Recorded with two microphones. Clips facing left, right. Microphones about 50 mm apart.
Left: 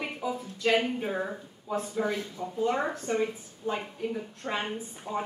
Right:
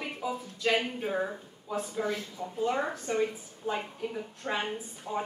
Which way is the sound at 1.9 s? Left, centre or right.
Centre.